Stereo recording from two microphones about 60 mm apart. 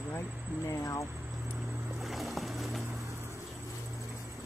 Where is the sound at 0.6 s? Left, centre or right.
Left.